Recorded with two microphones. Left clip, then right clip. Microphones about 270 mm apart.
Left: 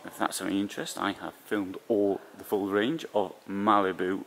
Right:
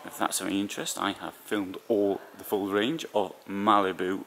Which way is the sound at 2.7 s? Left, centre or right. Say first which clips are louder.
Even; centre.